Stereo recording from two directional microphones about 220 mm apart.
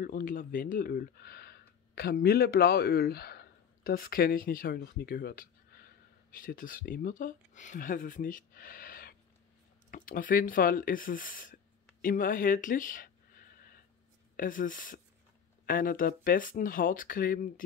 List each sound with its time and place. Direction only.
0.0 s speech: 40° left (ahead or behind)
12.0 s a sound: 40° left (ahead or behind)
14.3 s speech: 40° left (ahead or behind)